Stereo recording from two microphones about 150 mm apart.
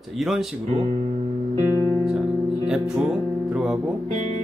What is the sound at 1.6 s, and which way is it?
Music, 25° left (ahead or behind).